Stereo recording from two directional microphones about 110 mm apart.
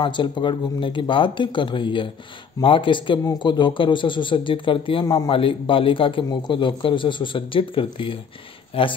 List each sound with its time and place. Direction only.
0.0 s a man's voice: 45° left (ahead or behind)
5.0 s a man's voice: 35° left (ahead or behind)
5.3 s a man's voice: 50° left (ahead or behind)